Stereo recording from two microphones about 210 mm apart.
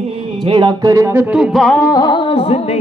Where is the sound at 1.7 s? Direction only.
15° left (ahead or behind).